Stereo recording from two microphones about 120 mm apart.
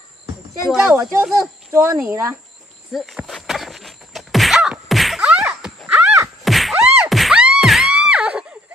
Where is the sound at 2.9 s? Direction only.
Centre (ahead or behind).